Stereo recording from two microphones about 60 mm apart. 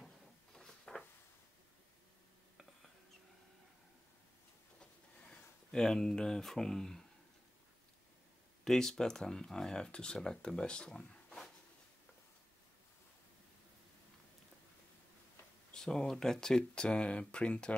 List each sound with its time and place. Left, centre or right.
0.6 s a sound: centre
5.3 s speech: centre
8.6 s speech: centre
15.7 s speech: centre